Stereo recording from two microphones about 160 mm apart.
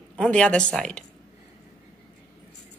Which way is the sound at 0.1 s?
5° left (ahead or behind).